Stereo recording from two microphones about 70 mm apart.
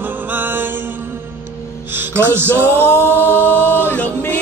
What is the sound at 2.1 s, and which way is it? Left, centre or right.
Music, right.